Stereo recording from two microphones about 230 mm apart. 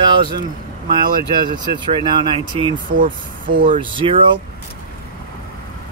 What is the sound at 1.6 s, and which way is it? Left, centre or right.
Speech, centre.